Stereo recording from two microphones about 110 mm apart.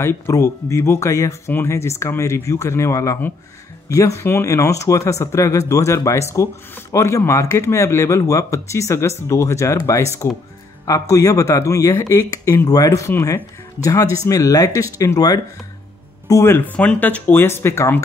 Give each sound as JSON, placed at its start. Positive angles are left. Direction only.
{"t": 0.0, "sound": "speech", "side_deg": 25}
{"t": 16.7, "sound": "speech", "side_deg": 10}